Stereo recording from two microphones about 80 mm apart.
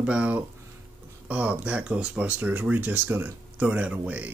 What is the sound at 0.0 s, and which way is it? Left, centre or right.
Speech, centre.